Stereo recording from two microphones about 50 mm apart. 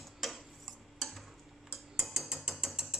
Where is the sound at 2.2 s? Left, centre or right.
Centre.